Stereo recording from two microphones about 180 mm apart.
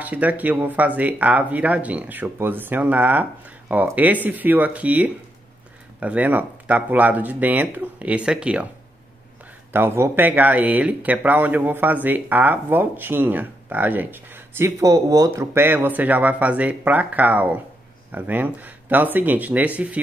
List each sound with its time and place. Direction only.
0.0 s speech: 10° right (ahead or behind)
9.7 s speech: 10° right (ahead or behind)